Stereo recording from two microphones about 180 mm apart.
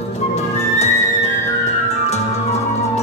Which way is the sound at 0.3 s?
40° left (ahead or behind).